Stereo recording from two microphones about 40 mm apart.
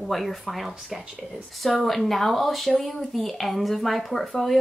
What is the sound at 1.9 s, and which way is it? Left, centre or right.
Speech, centre.